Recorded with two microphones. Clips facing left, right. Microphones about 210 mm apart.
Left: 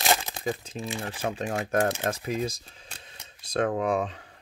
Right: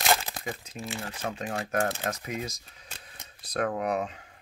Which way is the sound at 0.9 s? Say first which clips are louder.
Left 3 dB; 20° left (ahead or behind).